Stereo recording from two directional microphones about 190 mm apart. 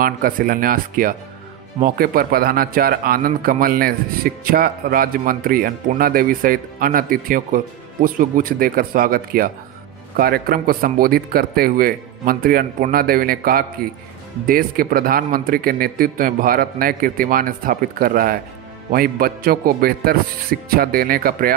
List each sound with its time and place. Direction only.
0.0 s speech: 50° right (ahead or behind)